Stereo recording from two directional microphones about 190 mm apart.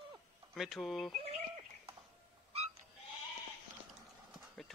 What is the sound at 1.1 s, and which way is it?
Bird, 30° right (ahead or behind).